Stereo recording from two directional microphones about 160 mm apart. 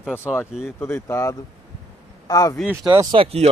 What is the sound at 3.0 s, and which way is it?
Speech, 30° right (ahead or behind).